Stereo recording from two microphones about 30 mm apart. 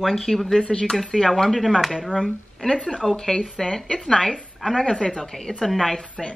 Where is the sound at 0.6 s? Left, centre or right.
Left.